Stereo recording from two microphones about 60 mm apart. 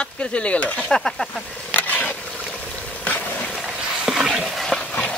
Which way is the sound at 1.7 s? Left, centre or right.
Left.